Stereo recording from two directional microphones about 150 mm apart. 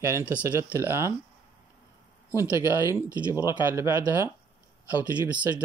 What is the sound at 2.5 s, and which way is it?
Speech, 15° right (ahead or behind).